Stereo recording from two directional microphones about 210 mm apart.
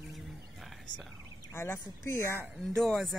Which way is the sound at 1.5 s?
10° left (ahead or behind).